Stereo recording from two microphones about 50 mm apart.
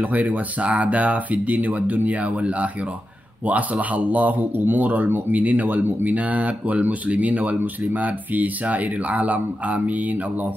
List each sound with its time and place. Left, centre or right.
0.0 s speech: right
3.7 s speech: right